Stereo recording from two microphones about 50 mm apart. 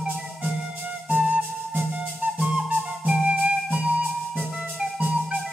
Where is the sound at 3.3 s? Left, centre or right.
Right.